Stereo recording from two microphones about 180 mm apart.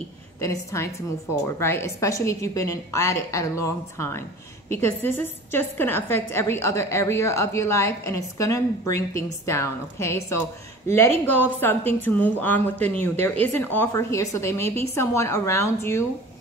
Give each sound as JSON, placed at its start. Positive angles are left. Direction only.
{"t": 0.4, "sound": "a woman's voice", "side_deg": 15}